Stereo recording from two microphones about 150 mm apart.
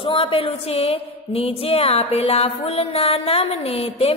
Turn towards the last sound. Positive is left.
turn(degrees=40)  # may be behind; listen again after turning